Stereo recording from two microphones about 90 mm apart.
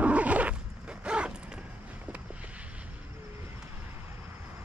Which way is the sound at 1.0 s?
10° right (ahead or behind).